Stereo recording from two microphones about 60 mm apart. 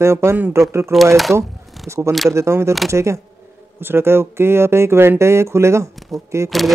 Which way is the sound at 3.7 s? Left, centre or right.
Right.